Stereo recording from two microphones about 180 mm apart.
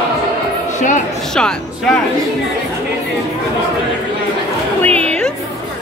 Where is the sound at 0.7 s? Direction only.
45° left (ahead or behind).